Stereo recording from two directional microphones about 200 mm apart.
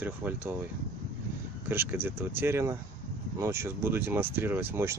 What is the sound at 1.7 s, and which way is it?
Speech, 10° right (ahead or behind).